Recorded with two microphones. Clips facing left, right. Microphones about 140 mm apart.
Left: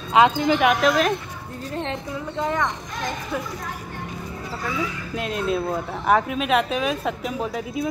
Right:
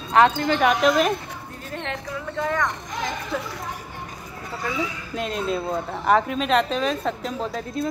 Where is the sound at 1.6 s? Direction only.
30° left (ahead or behind).